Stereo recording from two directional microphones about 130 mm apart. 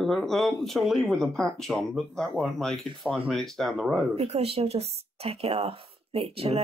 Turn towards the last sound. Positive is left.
turn(degrees=-50)  # may be behind; listen again after turning